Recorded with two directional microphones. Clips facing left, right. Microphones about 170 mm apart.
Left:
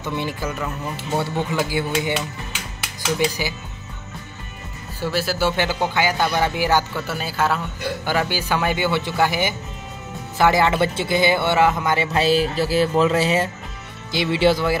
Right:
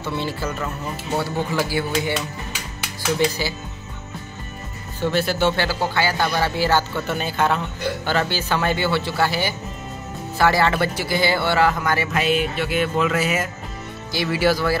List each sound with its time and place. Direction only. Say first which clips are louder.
0.0 s speech: even; 15° left (ahead or behind)
3.4 s speech: right 1 dB; 15° left (ahead or behind)
5.0 s speech: right 2 dB; 5° left (ahead or behind)
5.6 s speech: left 1 dB; 15° left (ahead or behind)